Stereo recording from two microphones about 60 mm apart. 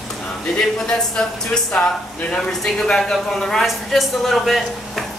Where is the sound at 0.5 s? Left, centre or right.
Centre.